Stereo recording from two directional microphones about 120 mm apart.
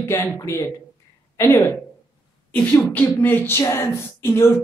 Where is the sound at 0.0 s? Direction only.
25° left (ahead or behind).